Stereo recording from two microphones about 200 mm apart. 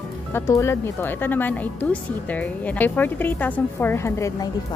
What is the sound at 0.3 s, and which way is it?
Speech, 15° left (ahead or behind).